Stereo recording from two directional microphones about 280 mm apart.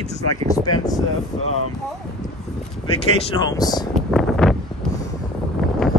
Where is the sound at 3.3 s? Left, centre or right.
Centre.